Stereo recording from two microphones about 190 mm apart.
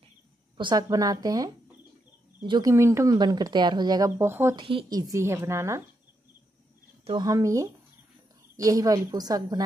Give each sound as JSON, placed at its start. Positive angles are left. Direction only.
{"t": 0.6, "sound": "speech", "side_deg": -20}
{"t": 4.6, "sound": "a woman's voice", "side_deg": -25}
{"t": 7.1, "sound": "a woman's voice", "side_deg": -20}